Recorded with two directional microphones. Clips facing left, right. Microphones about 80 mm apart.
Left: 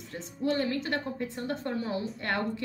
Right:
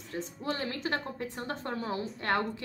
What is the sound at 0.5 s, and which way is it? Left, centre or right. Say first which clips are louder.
A woman's voice: left 2 dB; right.